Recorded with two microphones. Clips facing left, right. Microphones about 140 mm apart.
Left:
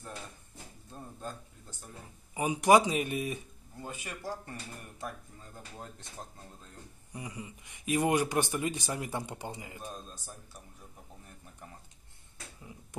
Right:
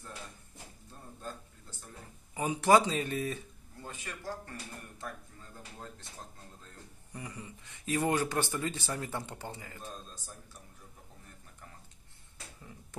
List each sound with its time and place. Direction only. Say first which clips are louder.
2.3 s speech: left 2 dB; 15° left (ahead or behind)
7.1 s speech: left 2 dB; 10° left (ahead or behind)